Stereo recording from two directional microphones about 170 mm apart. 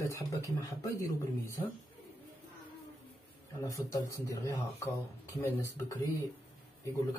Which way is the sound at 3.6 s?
20° left (ahead or behind).